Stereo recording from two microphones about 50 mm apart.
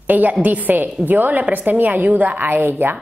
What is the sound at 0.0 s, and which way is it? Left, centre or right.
A woman's voice, right.